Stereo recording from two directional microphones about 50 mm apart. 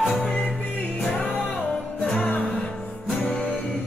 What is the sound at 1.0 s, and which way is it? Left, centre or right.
Music, centre.